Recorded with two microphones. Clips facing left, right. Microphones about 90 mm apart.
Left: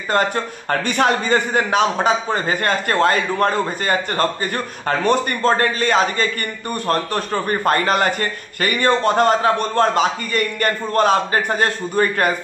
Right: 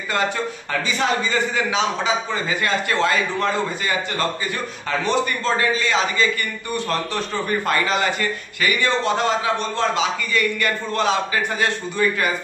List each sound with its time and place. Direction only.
0.1 s a man's voice: 50° left (ahead or behind)